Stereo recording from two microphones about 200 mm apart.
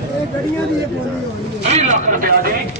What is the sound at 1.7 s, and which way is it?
Speech, 40° right (ahead or behind).